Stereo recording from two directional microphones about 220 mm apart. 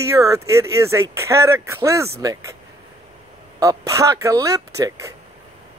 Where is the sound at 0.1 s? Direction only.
15° right (ahead or behind).